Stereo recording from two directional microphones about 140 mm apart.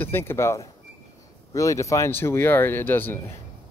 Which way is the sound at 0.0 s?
15° left (ahead or behind).